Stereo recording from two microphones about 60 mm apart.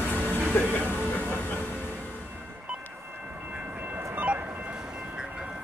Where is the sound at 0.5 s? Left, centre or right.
Left.